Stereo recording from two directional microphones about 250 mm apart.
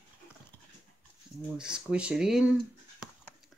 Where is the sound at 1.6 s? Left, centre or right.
Centre.